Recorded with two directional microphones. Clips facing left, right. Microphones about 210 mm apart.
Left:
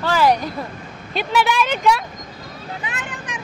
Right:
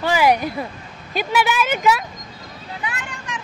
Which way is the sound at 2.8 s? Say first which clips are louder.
Even; 20° left (ahead or behind).